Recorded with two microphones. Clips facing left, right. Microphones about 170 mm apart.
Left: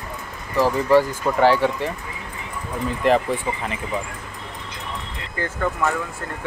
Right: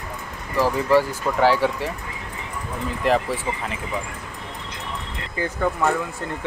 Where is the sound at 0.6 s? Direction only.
5° right (ahead or behind).